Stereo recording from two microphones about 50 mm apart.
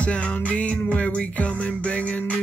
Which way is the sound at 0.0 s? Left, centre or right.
Left.